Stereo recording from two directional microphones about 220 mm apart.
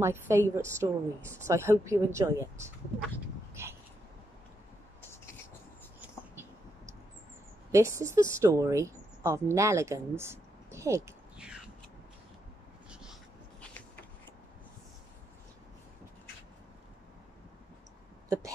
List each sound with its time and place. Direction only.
0.0 s a woman's voice: 10° right (ahead or behind)
7.7 s a woman's voice: 15° right (ahead or behind)